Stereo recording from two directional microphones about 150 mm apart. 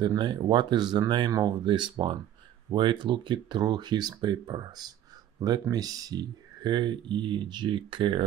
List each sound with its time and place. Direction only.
0.0 s speech: 30° right (ahead or behind)